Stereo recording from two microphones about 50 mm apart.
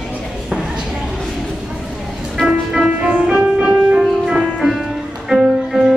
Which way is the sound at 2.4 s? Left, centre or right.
Centre.